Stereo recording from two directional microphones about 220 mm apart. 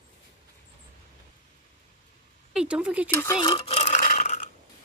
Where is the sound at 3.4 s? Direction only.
20° left (ahead or behind).